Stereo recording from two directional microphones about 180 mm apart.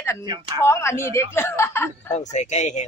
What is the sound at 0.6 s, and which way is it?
Speech, 15° left (ahead or behind).